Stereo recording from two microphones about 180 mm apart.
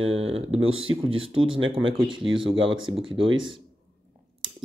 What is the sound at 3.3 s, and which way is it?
Speech, 90° right.